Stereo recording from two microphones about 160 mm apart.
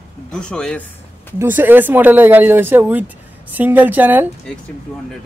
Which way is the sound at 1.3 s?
10° right (ahead or behind).